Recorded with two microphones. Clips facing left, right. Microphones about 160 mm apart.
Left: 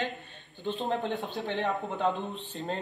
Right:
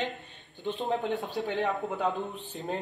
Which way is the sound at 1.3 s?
Centre (ahead or behind).